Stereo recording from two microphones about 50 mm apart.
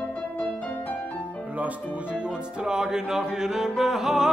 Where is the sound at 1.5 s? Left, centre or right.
Right; by 4.3 s centre.